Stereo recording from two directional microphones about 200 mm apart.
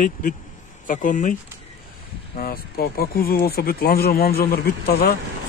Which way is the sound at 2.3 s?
45° left (ahead or behind).